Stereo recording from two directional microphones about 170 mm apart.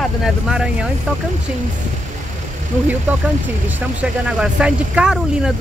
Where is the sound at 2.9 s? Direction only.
10° right (ahead or behind).